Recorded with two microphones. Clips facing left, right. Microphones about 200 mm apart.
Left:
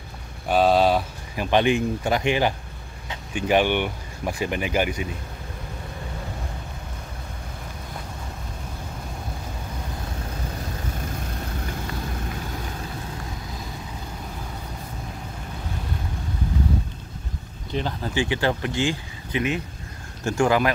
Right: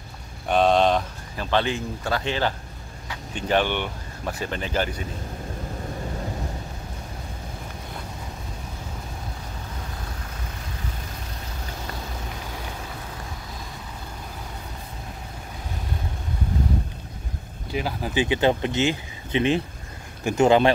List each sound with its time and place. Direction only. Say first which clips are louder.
0.5 s speech: left 1 dB; 5° left (ahead or behind)
17.6 s speech: even; 10° right (ahead or behind); by 20.7 s 25° right (ahead or behind)